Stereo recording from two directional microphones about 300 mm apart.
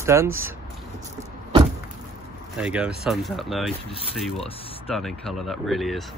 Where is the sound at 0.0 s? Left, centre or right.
Centre.